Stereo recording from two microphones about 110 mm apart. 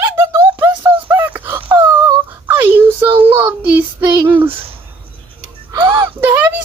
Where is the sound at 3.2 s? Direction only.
15° right (ahead or behind).